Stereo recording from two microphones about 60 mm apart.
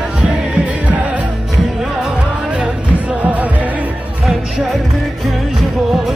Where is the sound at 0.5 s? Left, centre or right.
Right.